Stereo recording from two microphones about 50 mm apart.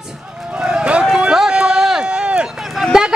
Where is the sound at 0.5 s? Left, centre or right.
Centre.